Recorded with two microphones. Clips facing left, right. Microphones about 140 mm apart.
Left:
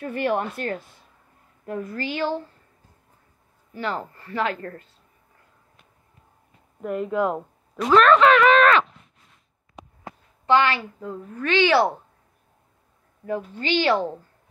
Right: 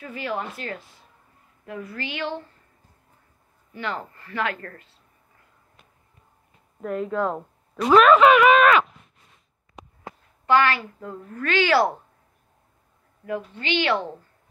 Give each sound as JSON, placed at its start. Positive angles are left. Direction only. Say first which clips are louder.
{"t": 0.0, "sound": "a woman's voice", "louder": "left 6 dB", "side_deg": 60}
{"t": 3.7, "sound": "a woman's voice", "louder": "left 2 dB", "side_deg": 40}
{"t": 6.8, "sound": "speech", "louder": "left 2 dB", "side_deg": 5}
{"t": 7.9, "sound": "speech", "louder": "right 1 dB", "side_deg": -5}
{"t": 9.8, "sound": "a sound", "louder": "left 1 dB", "side_deg": 0}
{"t": 10.4, "sound": "a woman's voice", "louder": "even", "side_deg": 25}
{"t": 10.8, "sound": "a woman's voice", "louder": "left 2 dB", "side_deg": 5}
{"t": 11.4, "sound": "speech", "louder": "left 1 dB", "side_deg": 20}
{"t": 13.6, "sound": "a woman's voice", "louder": "left 3 dB", "side_deg": 35}